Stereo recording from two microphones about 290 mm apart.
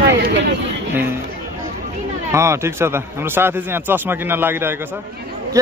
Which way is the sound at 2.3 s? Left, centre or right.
Centre.